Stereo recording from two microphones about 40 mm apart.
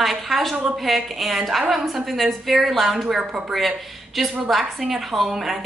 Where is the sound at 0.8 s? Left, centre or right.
Centre.